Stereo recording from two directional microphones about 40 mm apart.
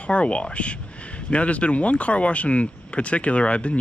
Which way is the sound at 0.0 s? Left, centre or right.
Left.